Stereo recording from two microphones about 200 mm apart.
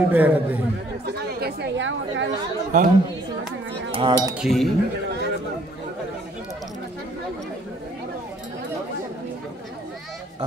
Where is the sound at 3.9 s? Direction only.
20° right (ahead or behind).